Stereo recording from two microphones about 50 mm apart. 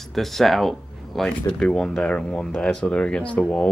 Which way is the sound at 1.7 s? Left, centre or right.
Centre.